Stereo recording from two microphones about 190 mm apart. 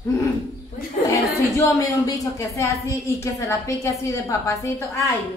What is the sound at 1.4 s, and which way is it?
A woman's voice, 15° left (ahead or behind).